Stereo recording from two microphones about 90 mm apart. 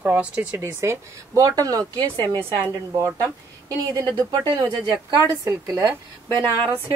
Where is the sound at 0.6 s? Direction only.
30° right (ahead or behind).